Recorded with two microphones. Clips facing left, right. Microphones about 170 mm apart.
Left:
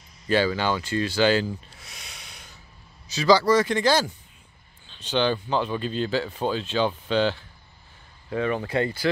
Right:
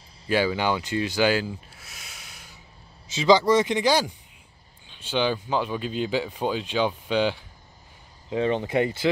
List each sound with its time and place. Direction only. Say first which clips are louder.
0.3 s speech: left 1 dB; 10° right (ahead or behind)
3.1 s speech: even; 20° right (ahead or behind)
8.3 s speech: right 2 dB; 25° right (ahead or behind)